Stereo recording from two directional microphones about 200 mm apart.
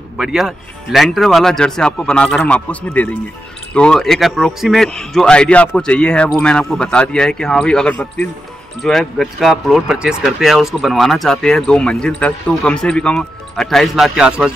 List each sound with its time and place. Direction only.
0.2 s speech: centre (ahead or behind)